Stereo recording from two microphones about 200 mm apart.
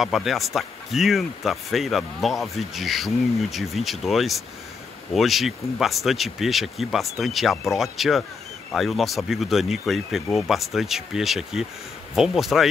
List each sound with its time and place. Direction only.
0.0 s speech: centre (ahead or behind)